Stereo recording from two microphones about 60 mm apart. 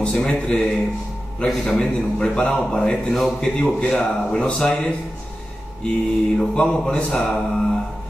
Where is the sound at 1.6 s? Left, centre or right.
Centre.